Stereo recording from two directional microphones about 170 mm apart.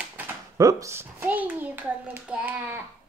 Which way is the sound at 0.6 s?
20° right (ahead or behind).